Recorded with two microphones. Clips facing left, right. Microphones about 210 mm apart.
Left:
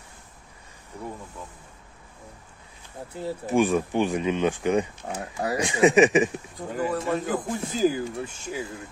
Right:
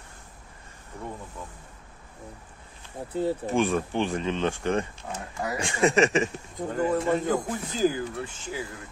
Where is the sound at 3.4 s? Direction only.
15° left (ahead or behind).